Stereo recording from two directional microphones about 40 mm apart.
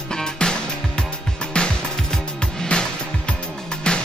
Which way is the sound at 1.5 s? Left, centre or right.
Left.